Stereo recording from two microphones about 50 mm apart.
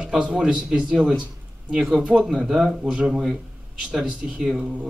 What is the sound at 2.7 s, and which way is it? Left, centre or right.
Speech, centre.